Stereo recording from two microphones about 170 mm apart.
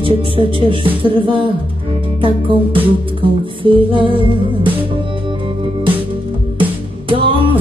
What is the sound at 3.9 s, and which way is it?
Music, 30° right (ahead or behind).